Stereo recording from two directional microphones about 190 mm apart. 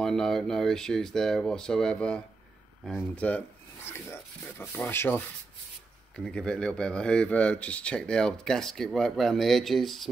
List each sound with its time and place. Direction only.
0.0 s speech: centre (ahead or behind)